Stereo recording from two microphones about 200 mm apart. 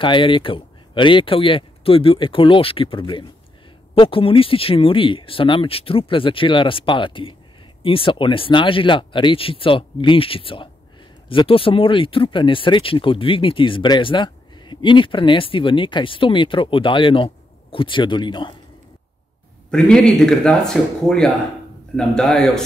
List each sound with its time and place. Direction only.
0.0 s speech: 25° left (ahead or behind)
19.7 s speech: 5° left (ahead or behind)